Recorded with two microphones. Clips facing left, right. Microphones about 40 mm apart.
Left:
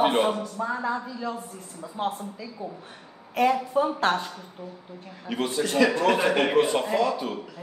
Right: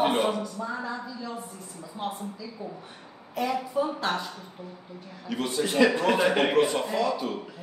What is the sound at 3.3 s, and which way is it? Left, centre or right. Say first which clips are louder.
Speech: left 6 dB; left.